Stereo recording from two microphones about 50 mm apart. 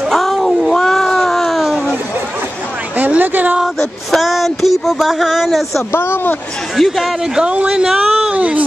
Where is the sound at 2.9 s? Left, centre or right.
Right.